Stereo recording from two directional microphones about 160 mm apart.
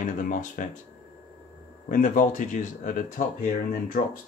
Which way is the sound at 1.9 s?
50° left (ahead or behind).